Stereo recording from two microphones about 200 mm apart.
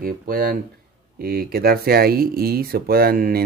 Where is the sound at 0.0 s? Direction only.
45° right (ahead or behind).